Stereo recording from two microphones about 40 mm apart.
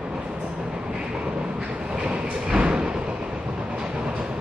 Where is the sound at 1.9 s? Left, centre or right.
Right.